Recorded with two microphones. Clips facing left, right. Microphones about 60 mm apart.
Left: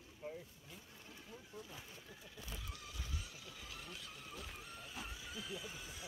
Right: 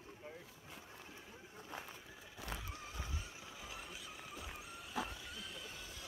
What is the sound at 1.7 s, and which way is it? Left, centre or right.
Pigeon, right.